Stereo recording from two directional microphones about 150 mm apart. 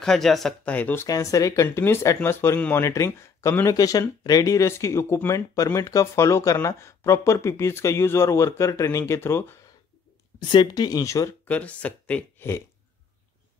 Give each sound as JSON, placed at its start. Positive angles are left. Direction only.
{"t": 0.0, "sound": "speech", "side_deg": 0}
{"t": 1.0, "sound": "speech", "side_deg": 25}
{"t": 10.5, "sound": "speech", "side_deg": 30}